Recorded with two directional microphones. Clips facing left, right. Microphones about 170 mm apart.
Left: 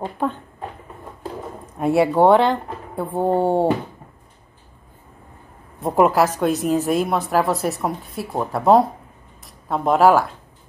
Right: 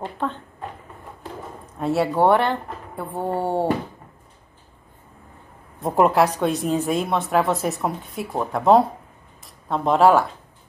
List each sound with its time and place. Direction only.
0.0 s speech: 10° left (ahead or behind)
1.8 s speech: 15° left (ahead or behind)
5.8 s a woman's voice: centre (ahead or behind)